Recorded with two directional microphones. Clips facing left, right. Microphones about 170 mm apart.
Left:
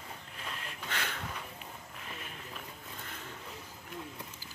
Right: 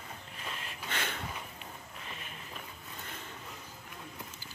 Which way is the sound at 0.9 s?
20° right (ahead or behind).